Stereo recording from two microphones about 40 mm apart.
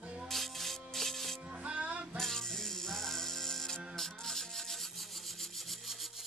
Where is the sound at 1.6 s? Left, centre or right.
Right.